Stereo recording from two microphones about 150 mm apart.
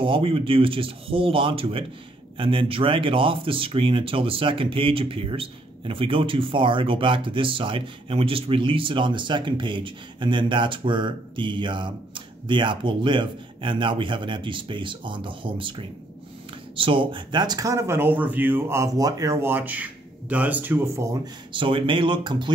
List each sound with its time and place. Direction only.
0.0 s speech: 35° right (ahead or behind); by 21.2 s 20° right (ahead or behind)
21.5 s speech: 35° right (ahead or behind)